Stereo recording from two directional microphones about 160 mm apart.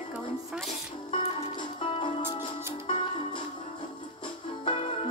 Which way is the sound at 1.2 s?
35° left (ahead or behind).